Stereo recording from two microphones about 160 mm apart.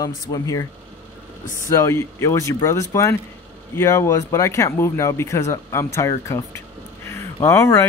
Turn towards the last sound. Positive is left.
turn(degrees=15)  # may be behind; listen again after turning